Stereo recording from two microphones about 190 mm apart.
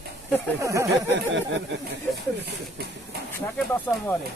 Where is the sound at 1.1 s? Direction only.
70° right (ahead or behind).